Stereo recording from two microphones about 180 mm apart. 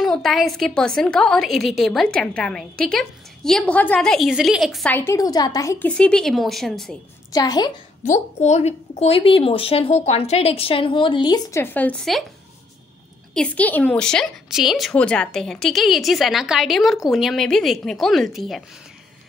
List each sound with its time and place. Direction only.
0.0 s a woman's voice: centre (ahead or behind)
4.9 s a woman's voice: 15° left (ahead or behind)
7.3 s a woman's voice: 20° left (ahead or behind)
8.0 s speech: 40° left (ahead or behind); by 11.6 s 20° left (ahead or behind)
11.6 s a woman's voice: 10° left (ahead or behind)
13.3 s a woman's voice: 5° left (ahead or behind)